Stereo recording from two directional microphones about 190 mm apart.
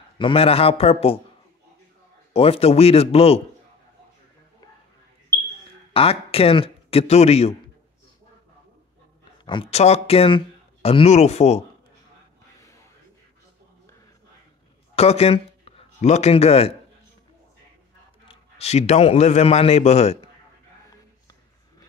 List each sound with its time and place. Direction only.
0.2 s speech: 30° left (ahead or behind)
2.3 s speech: 30° left (ahead or behind)
5.9 s speech: 30° left (ahead or behind)
9.5 s speech: 30° left (ahead or behind)
12.5 s a sound: 15° left (ahead or behind)
15.0 s speech: 30° left (ahead or behind)
18.3 s speech: 35° left (ahead or behind)